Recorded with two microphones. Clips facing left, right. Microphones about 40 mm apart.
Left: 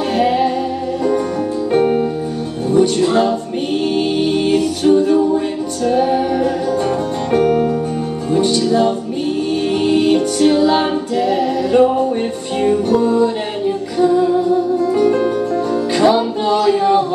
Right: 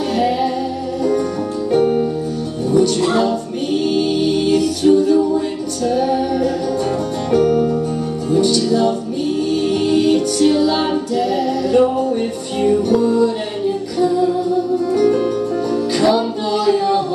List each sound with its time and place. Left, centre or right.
0.1 s music: left
3.1 s music: left